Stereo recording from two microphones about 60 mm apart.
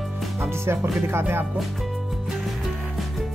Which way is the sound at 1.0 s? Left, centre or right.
Right.